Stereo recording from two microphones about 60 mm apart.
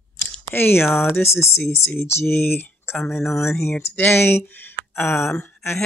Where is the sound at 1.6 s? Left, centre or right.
Left.